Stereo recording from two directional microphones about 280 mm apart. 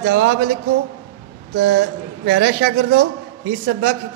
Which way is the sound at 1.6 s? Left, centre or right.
Right.